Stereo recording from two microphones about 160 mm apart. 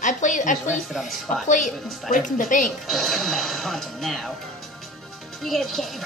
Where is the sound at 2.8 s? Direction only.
Centre (ahead or behind).